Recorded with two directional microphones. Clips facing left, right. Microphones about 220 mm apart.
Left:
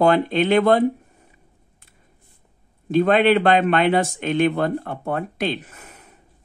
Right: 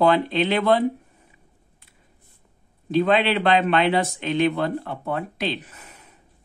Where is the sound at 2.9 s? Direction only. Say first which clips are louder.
Left 4 dB; 45° left (ahead or behind).